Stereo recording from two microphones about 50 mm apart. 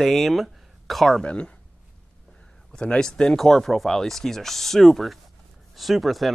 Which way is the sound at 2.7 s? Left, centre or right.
Centre.